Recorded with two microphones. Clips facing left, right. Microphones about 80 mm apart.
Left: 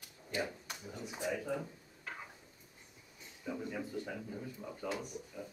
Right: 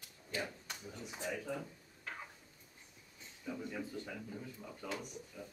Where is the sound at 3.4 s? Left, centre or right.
Centre.